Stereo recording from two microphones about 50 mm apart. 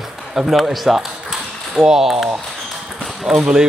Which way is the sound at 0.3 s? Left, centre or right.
Centre.